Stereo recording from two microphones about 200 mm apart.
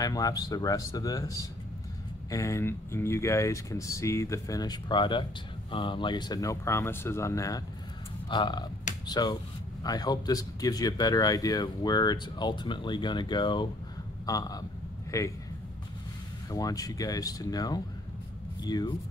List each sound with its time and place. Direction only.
0.0 s speech: 20° left (ahead or behind)
16.4 s speech: 20° left (ahead or behind)